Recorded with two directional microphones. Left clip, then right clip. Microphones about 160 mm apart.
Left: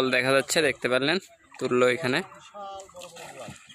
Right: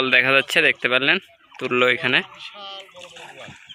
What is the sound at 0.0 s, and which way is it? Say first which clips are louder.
Speech: right 6 dB; 5° left (ahead or behind).